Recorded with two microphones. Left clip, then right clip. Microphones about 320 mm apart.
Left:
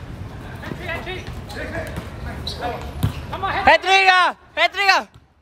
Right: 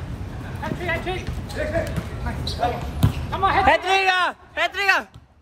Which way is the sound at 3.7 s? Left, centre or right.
Centre.